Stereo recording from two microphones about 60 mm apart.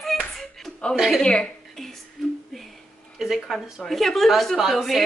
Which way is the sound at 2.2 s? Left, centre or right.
Centre.